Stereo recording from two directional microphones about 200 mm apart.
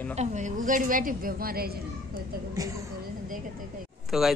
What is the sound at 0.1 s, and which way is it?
A woman's voice, 35° right (ahead or behind).